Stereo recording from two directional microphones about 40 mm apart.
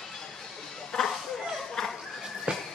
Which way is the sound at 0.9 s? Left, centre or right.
Centre.